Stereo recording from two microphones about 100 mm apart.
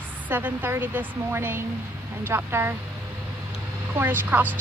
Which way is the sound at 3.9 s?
20° right (ahead or behind).